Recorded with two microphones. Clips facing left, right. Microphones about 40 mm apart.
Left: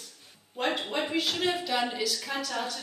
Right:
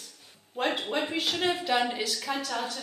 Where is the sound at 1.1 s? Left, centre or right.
Centre.